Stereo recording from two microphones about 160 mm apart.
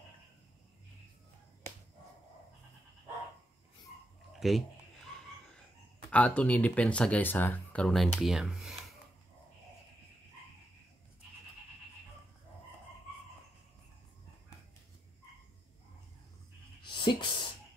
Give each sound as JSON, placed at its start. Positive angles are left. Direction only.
{"t": 4.3, "sound": "speech", "side_deg": 0}
{"t": 6.0, "sound": "speech", "side_deg": 5}
{"t": 16.8, "sound": "music", "side_deg": 30}